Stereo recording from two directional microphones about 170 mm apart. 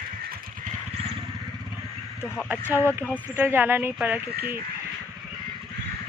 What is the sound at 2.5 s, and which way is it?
Speech, 15° right (ahead or behind).